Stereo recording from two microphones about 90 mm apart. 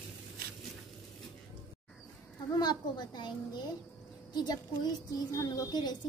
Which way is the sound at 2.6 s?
50° left (ahead or behind).